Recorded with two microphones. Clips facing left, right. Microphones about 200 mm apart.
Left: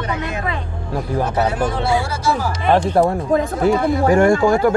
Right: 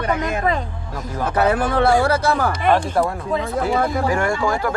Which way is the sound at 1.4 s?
55° right (ahead or behind).